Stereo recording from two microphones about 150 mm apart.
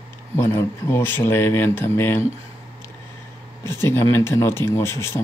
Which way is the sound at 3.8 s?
15° left (ahead or behind).